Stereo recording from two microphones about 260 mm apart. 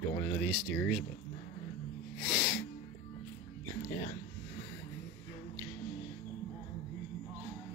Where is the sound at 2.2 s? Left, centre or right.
Centre.